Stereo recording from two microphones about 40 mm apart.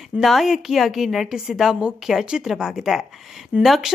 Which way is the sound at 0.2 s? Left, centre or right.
Centre.